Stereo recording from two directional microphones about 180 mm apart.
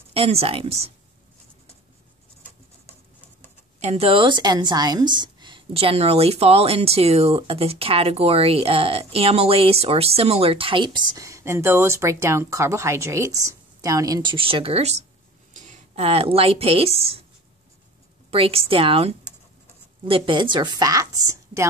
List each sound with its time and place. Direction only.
0.1 s a woman's voice: 35° right (ahead or behind)
3.8 s a woman's voice: 35° right (ahead or behind)
18.3 s a woman's voice: 30° right (ahead or behind)